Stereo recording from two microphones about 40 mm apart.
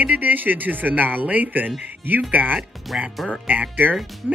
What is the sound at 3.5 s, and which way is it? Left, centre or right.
Speech, right.